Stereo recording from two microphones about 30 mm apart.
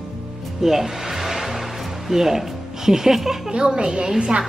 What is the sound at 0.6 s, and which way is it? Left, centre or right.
Music, centre.